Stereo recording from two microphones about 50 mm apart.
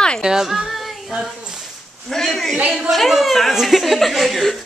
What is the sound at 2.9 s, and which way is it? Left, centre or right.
Speech, centre.